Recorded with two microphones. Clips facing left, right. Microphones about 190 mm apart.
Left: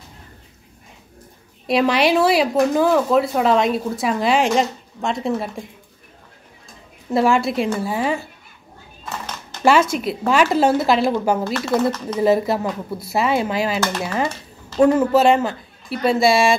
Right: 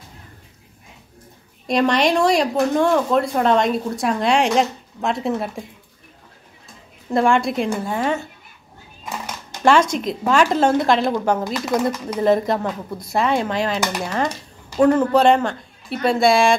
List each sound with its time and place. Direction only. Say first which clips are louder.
1.7 s speech: left 1 dB; 5° left (ahead or behind)
7.1 s a woman's voice: even; 5° left (ahead or behind)
9.0 s a sound: right 1 dB; 10° right (ahead or behind)
9.7 s a woman's voice: even; 5° left (ahead or behind)
11.4 s speech: left 1 dB; 15° right (ahead or behind)
12.2 s a woman's voice: even; 5° left (ahead or behind)